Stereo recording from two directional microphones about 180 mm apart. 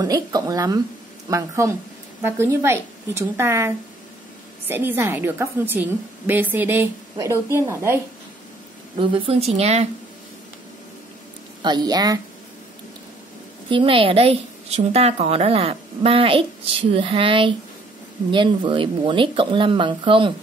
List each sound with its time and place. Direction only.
0.0 s a woman's voice: 20° right (ahead or behind)
8.9 s a woman's voice: 30° right (ahead or behind)
11.6 s speech: 25° right (ahead or behind)
13.7 s a woman's voice: 30° right (ahead or behind)